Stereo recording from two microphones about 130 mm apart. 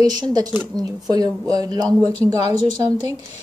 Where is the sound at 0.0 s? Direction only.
30° right (ahead or behind).